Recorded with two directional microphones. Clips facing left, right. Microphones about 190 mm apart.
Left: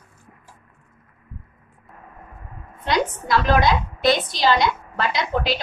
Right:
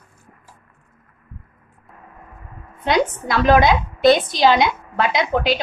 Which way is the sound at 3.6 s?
55° right (ahead or behind).